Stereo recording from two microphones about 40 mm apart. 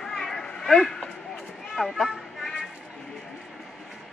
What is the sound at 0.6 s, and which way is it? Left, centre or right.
Speech, centre.